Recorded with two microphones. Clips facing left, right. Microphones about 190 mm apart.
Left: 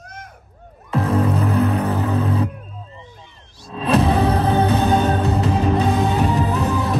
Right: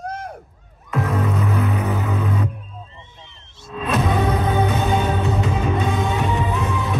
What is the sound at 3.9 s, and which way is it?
Music, 30° left (ahead or behind).